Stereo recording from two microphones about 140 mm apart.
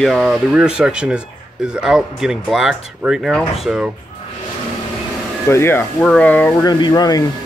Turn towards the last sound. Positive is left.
turn(degrees=25)  # may be behind; listen again after turning